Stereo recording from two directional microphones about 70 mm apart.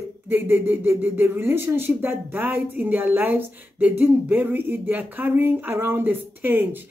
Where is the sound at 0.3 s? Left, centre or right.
Right.